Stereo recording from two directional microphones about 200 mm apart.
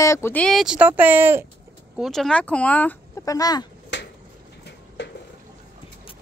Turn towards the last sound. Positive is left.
turn(degrees=60)  # may be behind; listen again after turning